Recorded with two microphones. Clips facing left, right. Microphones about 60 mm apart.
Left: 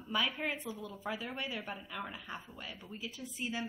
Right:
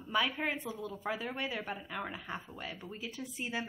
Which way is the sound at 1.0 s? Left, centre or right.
Right.